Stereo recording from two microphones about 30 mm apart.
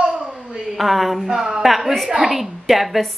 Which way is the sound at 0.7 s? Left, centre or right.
Centre.